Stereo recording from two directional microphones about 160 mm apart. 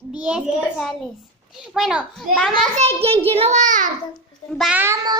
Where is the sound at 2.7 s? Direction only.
40° right (ahead or behind).